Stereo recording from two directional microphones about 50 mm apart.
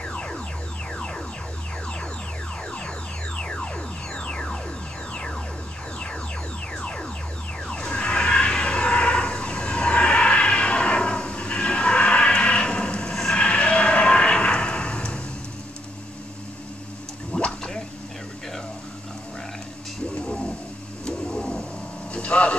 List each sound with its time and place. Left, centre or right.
0.0 s music: centre
3.3 s music: left
6.8 s music: centre
7.6 s a sound: centre
13.1 s vehicle: centre
13.4 s a sound: left
17.5 s drip: centre
20.2 s a sound: centre
22.1 s vehicle: left